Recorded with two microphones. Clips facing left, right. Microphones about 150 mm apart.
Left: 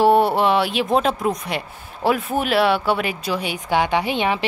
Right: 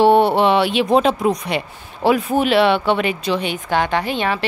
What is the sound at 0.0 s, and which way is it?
Speech, centre (ahead or behind).